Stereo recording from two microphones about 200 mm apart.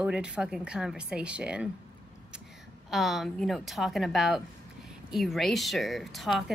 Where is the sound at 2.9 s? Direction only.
Centre (ahead or behind).